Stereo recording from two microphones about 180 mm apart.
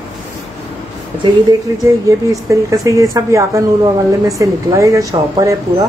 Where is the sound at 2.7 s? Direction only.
20° right (ahead or behind).